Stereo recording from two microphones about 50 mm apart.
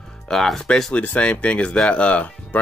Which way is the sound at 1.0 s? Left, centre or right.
Left.